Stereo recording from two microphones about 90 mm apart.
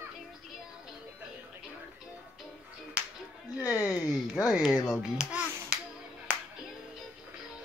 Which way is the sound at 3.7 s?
40° left (ahead or behind).